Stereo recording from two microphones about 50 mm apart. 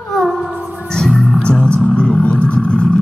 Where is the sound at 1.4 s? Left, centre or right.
Centre.